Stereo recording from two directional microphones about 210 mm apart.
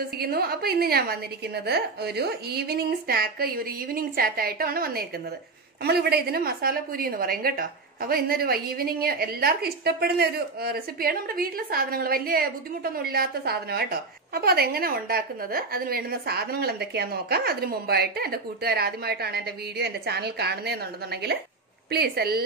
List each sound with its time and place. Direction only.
0.2 s a woman's voice: 45° right (ahead or behind)